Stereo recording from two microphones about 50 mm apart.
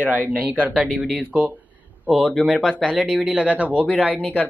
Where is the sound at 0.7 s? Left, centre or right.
Centre.